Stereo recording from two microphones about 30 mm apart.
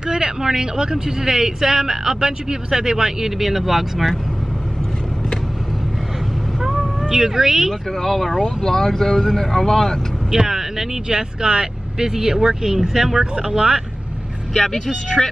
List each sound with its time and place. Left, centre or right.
0.4 s speech: centre
7.1 s speech: centre
8.0 s speech: centre
10.4 s vehicle: centre
11.1 s speech: right
13.2 s speech: right
14.5 s speech: centre